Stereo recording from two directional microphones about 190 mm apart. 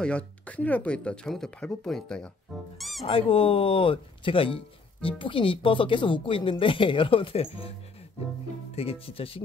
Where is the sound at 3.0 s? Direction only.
30° left (ahead or behind).